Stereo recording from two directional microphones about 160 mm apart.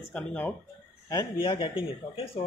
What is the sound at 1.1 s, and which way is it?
Speech, 30° left (ahead or behind).